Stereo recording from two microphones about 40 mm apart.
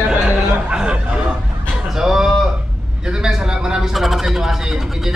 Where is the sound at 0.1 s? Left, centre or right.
Right.